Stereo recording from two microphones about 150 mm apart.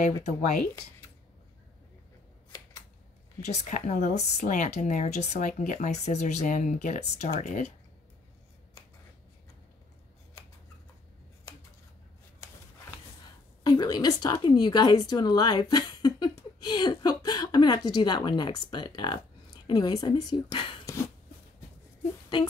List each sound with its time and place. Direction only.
0.2 s speech: 55° left (ahead or behind)
3.4 s speech: 50° left (ahead or behind)
13.7 s a woman's voice: 25° left (ahead or behind)